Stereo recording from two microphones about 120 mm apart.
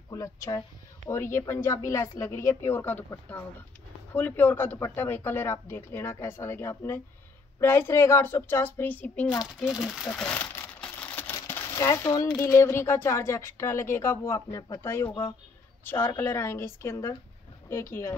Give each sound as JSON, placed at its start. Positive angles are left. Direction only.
{"t": 0.1, "sound": "a woman's voice", "side_deg": 25}
{"t": 10.1, "sound": "crumpling", "side_deg": 10}
{"t": 12.4, "sound": "speech", "side_deg": 25}